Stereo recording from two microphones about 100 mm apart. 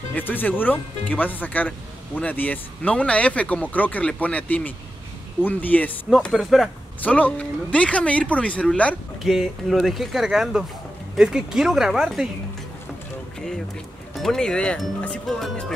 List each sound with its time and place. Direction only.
0.1 s speech: 20° left (ahead or behind)
6.3 s speech: centre (ahead or behind)
7.0 s speech: 15° left (ahead or behind)
9.2 s speech: centre (ahead or behind)
14.1 s speech: 5° left (ahead or behind)